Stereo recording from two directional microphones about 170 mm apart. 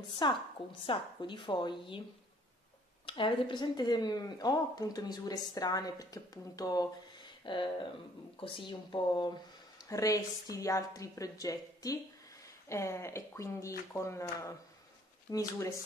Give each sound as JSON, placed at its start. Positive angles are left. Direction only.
{"t": 0.1, "sound": "speech", "side_deg": 25}
{"t": 3.1, "sound": "speech", "side_deg": 30}